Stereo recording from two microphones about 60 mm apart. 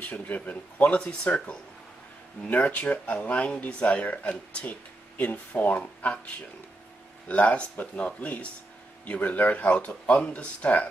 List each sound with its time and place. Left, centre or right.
0.0 s speech: left